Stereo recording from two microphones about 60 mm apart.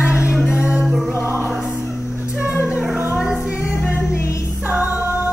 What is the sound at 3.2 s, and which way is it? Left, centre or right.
Music, centre.